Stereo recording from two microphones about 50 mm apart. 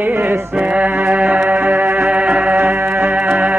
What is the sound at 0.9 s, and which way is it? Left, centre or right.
Music, right.